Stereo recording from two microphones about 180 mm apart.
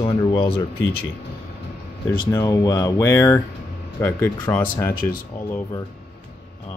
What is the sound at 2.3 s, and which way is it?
Speech, 20° left (ahead or behind).